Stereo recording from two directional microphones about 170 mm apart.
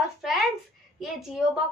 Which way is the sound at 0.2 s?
Centre (ahead or behind).